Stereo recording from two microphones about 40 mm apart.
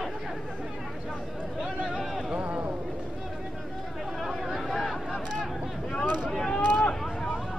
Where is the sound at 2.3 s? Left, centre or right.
Right.